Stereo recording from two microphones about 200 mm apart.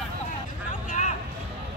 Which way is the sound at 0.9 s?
35° left (ahead or behind).